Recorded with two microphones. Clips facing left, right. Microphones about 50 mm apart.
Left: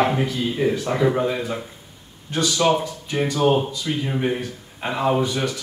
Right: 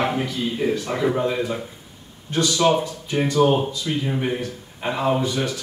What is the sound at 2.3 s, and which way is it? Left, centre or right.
A man's voice, centre.